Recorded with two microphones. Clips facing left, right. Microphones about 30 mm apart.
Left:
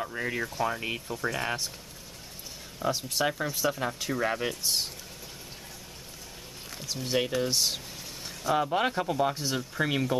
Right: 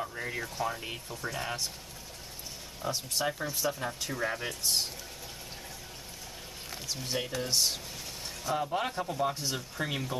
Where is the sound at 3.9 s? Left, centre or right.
Centre.